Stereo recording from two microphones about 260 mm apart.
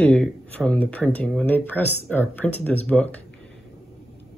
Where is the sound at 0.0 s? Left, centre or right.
Centre.